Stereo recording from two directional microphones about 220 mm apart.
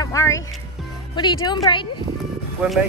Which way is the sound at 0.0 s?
15° left (ahead or behind).